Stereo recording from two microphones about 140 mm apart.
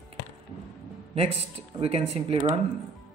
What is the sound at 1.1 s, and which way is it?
Speech, 45° right (ahead or behind).